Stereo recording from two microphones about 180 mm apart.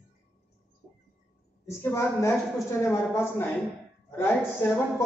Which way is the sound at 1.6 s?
15° left (ahead or behind).